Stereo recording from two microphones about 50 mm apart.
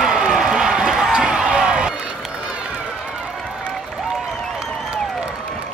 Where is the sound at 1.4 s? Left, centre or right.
Centre.